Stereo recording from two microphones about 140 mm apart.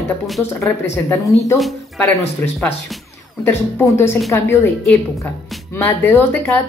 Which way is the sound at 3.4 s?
15° left (ahead or behind).